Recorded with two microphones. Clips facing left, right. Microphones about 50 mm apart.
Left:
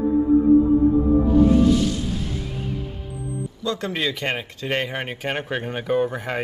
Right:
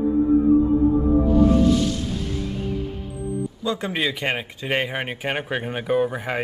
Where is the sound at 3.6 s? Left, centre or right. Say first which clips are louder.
Even; centre.